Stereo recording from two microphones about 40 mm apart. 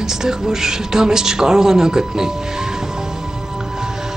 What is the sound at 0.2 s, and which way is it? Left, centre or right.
Music, centre.